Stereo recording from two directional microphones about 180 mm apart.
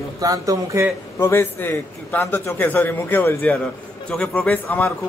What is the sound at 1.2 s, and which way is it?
A man's voice, 15° left (ahead or behind).